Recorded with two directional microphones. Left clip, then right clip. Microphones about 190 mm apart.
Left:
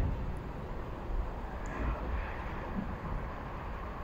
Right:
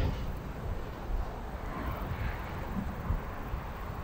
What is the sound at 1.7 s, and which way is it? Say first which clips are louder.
Vehicle: right 1 dB; 60° right (ahead or behind).